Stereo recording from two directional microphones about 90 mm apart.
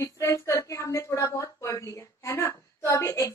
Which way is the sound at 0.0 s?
35° left (ahead or behind).